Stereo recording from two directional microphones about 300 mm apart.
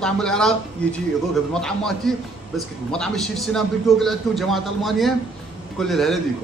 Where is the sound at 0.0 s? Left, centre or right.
Centre.